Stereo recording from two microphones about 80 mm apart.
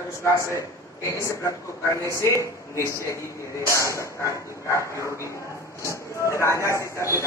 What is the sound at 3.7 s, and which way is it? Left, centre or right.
Speech, left.